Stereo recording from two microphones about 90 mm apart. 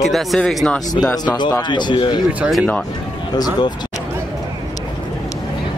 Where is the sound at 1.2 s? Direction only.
45° left (ahead or behind).